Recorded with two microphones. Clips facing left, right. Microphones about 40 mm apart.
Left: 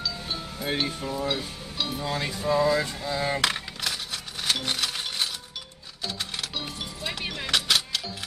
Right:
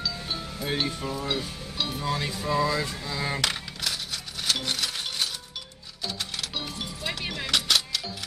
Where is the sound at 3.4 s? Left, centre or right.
Left.